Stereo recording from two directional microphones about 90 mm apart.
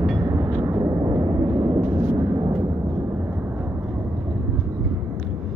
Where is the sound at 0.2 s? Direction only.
40° right (ahead or behind).